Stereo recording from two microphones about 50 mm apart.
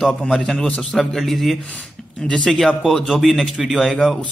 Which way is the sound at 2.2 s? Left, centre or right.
Centre.